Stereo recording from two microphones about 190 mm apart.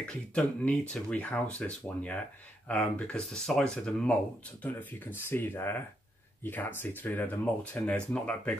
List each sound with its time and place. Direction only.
0.1 s speech: 5° left (ahead or behind)